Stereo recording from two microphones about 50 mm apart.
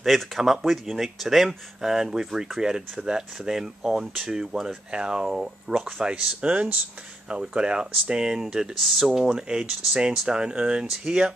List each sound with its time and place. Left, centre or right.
0.0 s speech: centre
8.7 s speech: centre